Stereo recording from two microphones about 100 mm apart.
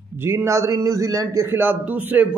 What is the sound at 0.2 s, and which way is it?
A man's voice, 25° right (ahead or behind).